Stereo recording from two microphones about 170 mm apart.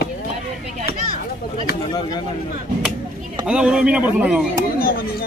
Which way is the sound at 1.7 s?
65° left (ahead or behind).